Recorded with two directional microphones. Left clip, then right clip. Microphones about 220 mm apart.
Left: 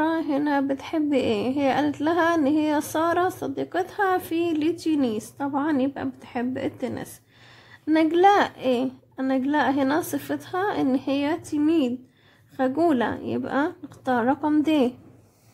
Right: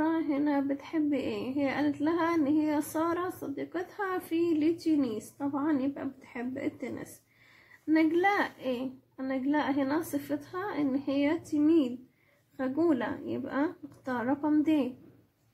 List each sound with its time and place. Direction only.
0.0 s a woman's voice: 40° left (ahead or behind)